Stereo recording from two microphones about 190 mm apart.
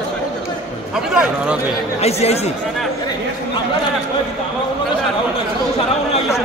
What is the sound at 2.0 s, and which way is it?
Speech, 35° left (ahead or behind).